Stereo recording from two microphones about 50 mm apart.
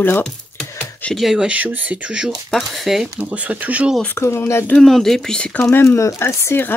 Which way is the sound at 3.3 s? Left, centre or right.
Right.